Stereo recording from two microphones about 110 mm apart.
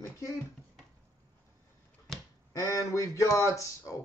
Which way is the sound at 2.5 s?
30° left (ahead or behind).